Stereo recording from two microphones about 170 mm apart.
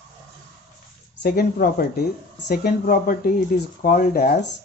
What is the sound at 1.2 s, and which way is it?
Speech, 65° left (ahead or behind).